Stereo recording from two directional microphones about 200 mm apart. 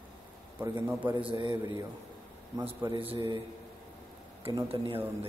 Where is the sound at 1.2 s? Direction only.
25° right (ahead or behind).